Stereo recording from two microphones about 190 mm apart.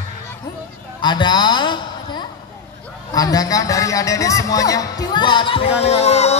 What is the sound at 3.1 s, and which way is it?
A man's voice, 20° left (ahead or behind).